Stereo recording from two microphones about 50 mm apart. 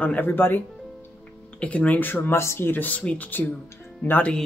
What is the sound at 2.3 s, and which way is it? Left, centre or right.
Speech, left.